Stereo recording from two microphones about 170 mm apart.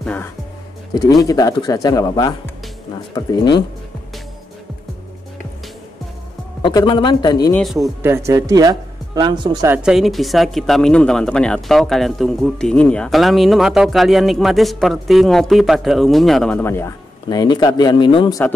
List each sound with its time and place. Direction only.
0.0 s speech: 10° left (ahead or behind)
1.2 s speech: 20° left (ahead or behind)
6.6 s speech: 25° left (ahead or behind)
7.5 s speech: centre (ahead or behind)
8.0 s speech: 15° right (ahead or behind)
9.7 s speech: 5° right (ahead or behind); by 18.4 s 30° left (ahead or behind)